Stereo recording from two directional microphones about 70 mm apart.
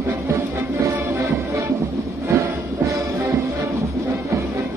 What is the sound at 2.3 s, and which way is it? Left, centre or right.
Music, right.